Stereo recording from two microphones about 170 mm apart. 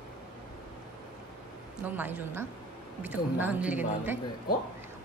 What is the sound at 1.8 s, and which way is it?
A woman's voice, 10° right (ahead or behind).